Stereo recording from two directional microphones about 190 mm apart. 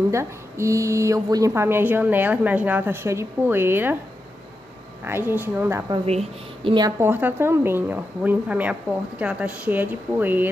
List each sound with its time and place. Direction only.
0.1 s a woman's voice: 15° right (ahead or behind)
5.0 s a woman's voice: 10° right (ahead or behind)
6.0 s a woman's voice: 30° right (ahead or behind)
7.0 s a woman's voice: 10° right (ahead or behind)